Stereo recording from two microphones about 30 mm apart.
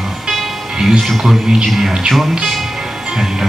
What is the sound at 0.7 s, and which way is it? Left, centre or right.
Speech, centre.